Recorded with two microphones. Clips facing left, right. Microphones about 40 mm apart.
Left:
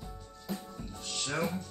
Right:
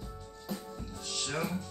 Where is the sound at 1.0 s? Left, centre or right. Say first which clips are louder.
Left 1 dB; left.